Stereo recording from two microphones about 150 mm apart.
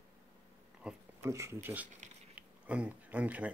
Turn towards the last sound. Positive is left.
turn(degrees=-10)  # may be behind; listen again after turning